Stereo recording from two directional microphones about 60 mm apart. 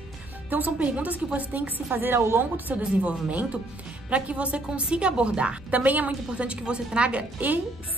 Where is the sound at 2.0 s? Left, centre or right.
Right.